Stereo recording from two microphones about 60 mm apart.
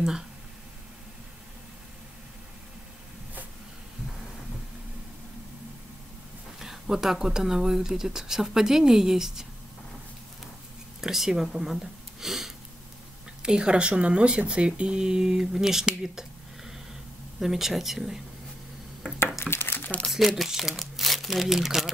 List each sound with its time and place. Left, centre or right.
6.6 s speech: centre
11.0 s speech: centre
19.5 s crumpling: left
20.1 s speech: centre